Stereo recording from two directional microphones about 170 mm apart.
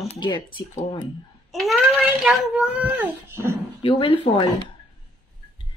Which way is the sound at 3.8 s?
30° left (ahead or behind).